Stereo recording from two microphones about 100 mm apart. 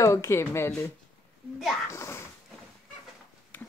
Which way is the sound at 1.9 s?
30° left (ahead or behind).